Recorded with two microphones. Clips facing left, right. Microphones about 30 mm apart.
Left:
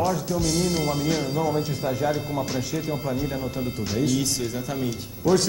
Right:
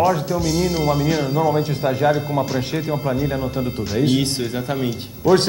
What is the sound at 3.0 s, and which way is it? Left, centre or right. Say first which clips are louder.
Speech: right 6 dB; right.